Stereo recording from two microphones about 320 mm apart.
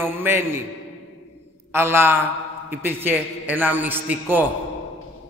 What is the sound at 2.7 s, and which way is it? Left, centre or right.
A man's voice, centre.